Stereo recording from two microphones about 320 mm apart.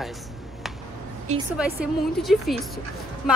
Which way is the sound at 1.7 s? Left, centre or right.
Centre.